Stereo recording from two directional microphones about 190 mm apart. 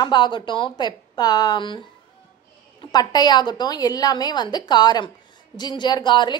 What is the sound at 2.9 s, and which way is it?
A woman's voice, 20° left (ahead or behind).